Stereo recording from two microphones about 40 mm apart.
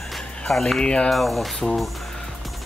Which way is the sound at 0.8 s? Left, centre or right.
Left.